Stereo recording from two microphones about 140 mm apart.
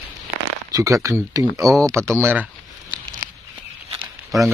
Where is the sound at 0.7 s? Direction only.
25° right (ahead or behind).